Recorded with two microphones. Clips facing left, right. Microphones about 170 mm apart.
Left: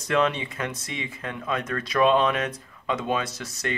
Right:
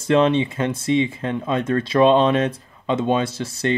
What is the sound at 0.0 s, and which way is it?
Speech, 25° right (ahead or behind).